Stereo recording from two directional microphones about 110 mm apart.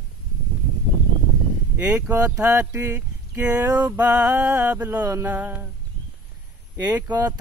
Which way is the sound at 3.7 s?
15° right (ahead or behind).